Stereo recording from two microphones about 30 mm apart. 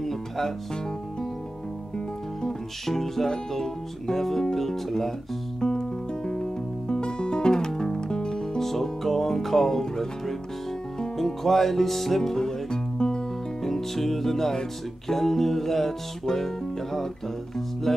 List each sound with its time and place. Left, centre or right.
0.0 s music: centre
2.9 s music: centre
5.6 s music: left; by 12.2 s centre
12.2 s music: centre
13.7 s music: centre